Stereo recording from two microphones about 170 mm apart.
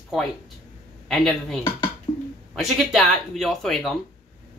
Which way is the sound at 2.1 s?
35° left (ahead or behind).